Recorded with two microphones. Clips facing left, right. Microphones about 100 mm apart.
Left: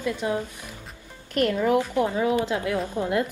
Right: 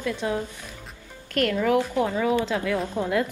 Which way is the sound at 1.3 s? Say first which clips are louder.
Even; 20° left (ahead or behind).